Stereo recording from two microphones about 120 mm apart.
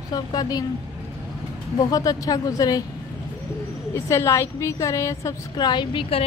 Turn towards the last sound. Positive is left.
turn(degrees=50)  # may be behind; listen again after turning